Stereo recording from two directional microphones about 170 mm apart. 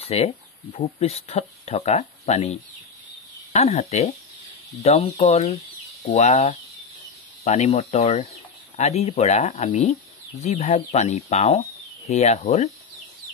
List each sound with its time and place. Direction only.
0.0 s speech: 35° left (ahead or behind)